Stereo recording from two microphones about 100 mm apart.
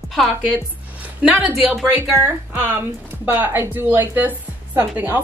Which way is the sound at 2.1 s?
20° right (ahead or behind).